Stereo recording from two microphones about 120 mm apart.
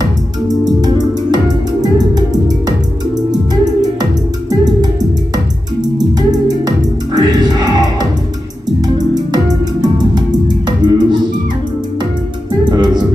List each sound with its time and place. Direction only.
0.7 s music: 35° right (ahead or behind)
5.8 s music: 35° right (ahead or behind)
9.1 s music: 35° right (ahead or behind)
12.6 s music: 35° right (ahead or behind)